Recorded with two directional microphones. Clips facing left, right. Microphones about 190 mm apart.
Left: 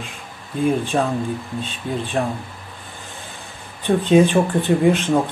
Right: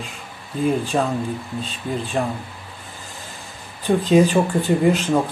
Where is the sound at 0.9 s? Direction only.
5° right (ahead or behind).